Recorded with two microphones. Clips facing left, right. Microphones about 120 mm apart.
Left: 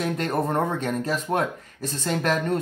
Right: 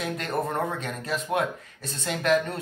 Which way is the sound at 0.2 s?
40° left (ahead or behind).